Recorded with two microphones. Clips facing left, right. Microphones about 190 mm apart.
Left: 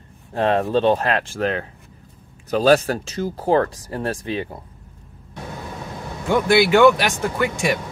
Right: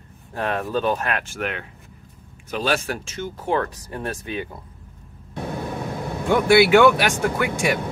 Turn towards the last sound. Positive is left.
turn(degrees=-10)  # may be behind; listen again after turning